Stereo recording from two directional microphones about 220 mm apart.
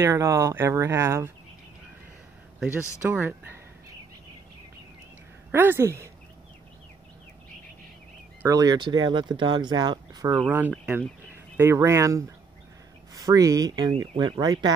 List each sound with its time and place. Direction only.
0.0 s speech: 15° right (ahead or behind)
2.6 s speech: 10° right (ahead or behind)
5.5 s speech: 10° right (ahead or behind)
8.4 s speech: 15° right (ahead or behind)
10.4 s speech: 5° right (ahead or behind)